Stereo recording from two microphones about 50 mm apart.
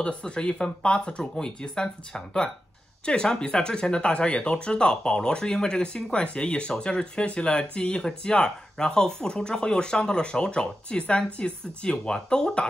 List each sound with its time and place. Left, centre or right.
0.0 s speech: centre